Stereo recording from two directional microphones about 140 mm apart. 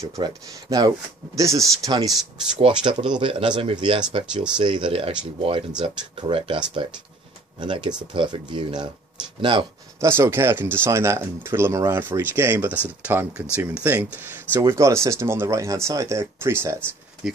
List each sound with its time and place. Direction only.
0.0 s speech: 25° right (ahead or behind)
7.6 s speech: 35° right (ahead or behind)
9.9 s speech: 20° right (ahead or behind)
17.2 s speech: 5° right (ahead or behind)